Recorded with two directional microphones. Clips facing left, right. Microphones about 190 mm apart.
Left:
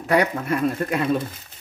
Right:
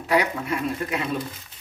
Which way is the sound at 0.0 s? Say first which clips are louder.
Left 3 dB; 50° left (ahead or behind).